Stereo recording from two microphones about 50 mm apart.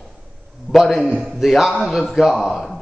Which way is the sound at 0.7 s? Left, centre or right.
Centre.